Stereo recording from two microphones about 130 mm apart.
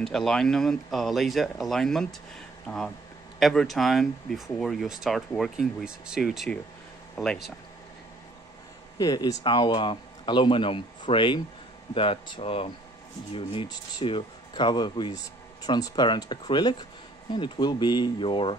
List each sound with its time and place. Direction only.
0.0 s speech: 5° left (ahead or behind)
3.3 s speech: centre (ahead or behind)
8.9 s speech: 30° left (ahead or behind)